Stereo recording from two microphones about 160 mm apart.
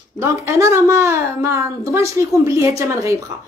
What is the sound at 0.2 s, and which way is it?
A woman's voice, 15° right (ahead or behind).